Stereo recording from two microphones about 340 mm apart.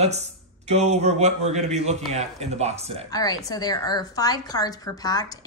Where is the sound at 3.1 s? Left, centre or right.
Centre.